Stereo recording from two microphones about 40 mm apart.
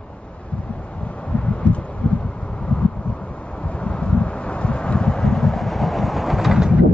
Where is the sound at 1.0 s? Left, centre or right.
Left; by 6.7 s centre.